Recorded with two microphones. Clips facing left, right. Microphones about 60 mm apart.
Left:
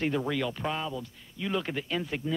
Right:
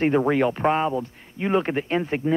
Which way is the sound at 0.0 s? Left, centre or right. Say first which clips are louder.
Right 10 dB; right.